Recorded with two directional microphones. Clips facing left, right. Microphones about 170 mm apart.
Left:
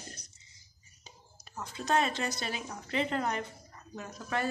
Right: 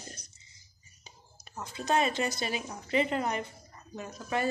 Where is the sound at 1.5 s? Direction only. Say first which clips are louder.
Right 1 dB; 10° right (ahead or behind).